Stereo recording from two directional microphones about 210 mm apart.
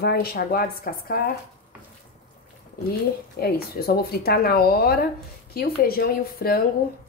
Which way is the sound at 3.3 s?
45° left (ahead or behind).